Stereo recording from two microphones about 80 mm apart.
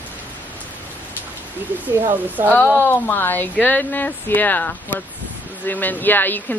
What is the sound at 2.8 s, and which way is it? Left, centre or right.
Speech, left.